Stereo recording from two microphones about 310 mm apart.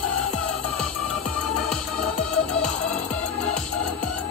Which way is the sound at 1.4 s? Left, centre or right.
Centre.